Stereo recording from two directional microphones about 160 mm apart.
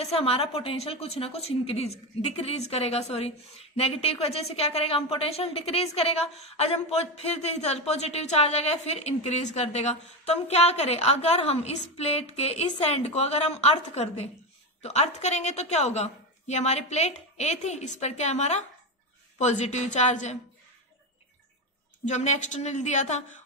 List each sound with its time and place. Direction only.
0.0 s a woman's voice: 40° left (ahead or behind)
22.0 s a woman's voice: 45° left (ahead or behind)